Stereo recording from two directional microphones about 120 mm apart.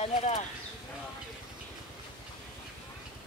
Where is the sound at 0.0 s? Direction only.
55° left (ahead or behind).